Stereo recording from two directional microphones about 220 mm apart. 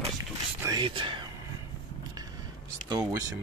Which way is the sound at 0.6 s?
20° right (ahead or behind).